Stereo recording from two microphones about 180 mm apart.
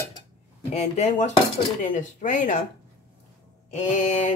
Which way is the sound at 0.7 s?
40° left (ahead or behind).